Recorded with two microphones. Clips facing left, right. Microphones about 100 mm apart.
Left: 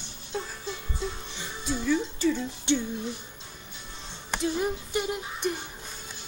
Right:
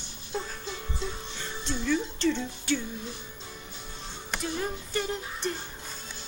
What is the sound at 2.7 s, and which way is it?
Music, 25° left (ahead or behind).